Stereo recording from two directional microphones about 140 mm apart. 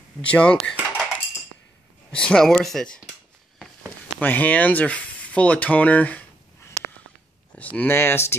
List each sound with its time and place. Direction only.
0.3 s speech: 10° left (ahead or behind)
2.1 s speech: 5° left (ahead or behind)
4.2 s speech: 10° left (ahead or behind)